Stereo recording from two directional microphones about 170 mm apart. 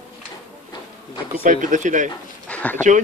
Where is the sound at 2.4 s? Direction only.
10° left (ahead or behind).